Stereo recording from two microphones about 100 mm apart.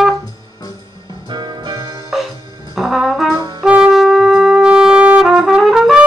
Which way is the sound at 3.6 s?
10° right (ahead or behind).